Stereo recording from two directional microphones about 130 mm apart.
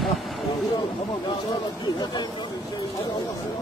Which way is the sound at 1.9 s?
30° left (ahead or behind).